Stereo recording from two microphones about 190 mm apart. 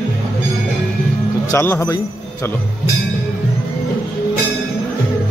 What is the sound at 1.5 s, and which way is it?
Speech, 10° left (ahead or behind).